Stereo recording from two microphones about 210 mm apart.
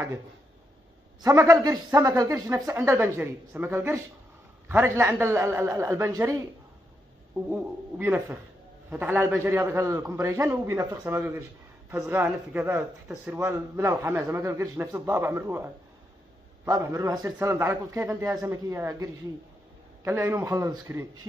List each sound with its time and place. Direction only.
1.2 s speech: 15° right (ahead or behind)
7.4 s speech: 5° right (ahead or behind)